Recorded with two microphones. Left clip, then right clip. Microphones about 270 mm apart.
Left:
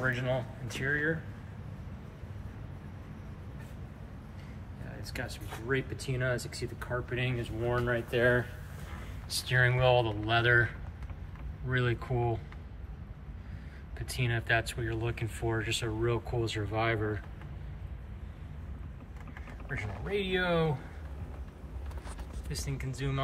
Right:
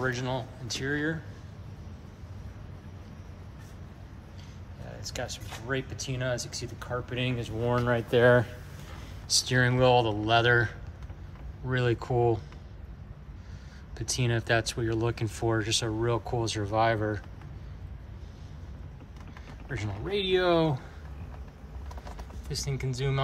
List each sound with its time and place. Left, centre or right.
0.8 s speech: centre
5.1 s speech: centre
9.3 s speech: centre
11.7 s speech: centre
13.9 s speech: centre
19.7 s speech: centre
22.5 s speech: centre